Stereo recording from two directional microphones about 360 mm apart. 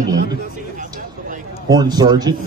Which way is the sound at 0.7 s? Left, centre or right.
Right.